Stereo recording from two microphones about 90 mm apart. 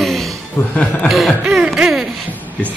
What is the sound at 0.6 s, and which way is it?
Speech, 35° left (ahead or behind).